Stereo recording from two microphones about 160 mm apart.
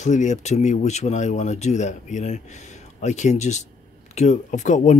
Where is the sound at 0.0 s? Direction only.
50° left (ahead or behind).